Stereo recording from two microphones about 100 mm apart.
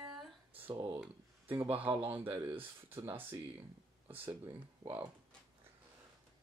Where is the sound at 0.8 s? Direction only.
15° right (ahead or behind).